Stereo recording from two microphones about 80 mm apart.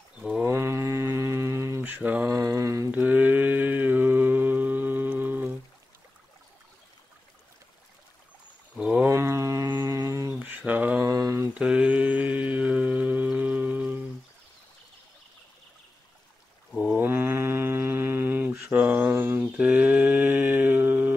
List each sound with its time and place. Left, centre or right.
0.2 s mantra: centre
0.5 s mantra: right
1.8 s mantra: right
2.4 s mantra: right
2.9 s mantra: right
8.7 s a sound: centre
9.1 s livestock: right
9.8 s a sound: right
10.4 s mantra: right
11.1 s mantra: right
11.5 s mantra: centre
16.7 s mantra: right
18.6 s a sound: centre
19.5 s mantra: centre